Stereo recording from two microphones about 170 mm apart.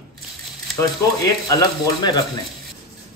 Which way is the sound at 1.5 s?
20° left (ahead or behind).